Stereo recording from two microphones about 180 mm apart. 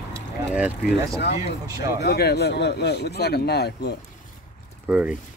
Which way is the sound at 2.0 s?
60° left (ahead or behind).